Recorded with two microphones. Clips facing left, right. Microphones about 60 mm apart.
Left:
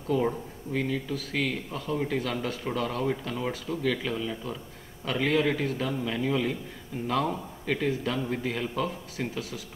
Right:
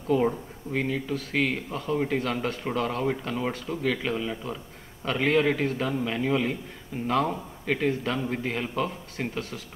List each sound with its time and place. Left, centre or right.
0.7 s a man's voice: right
9.3 s speech: right